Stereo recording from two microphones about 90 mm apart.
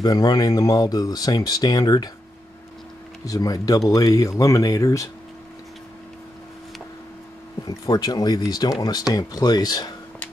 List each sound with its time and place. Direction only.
0.0 s speech: 45° left (ahead or behind)
3.3 s speech: 40° left (ahead or behind)
7.6 s speech: 45° left (ahead or behind)